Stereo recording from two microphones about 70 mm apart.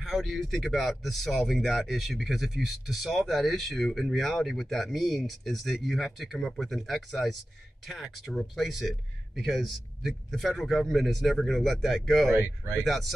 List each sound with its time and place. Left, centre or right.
0.0 s speech: centre
12.4 s speech: right
12.7 s speech: centre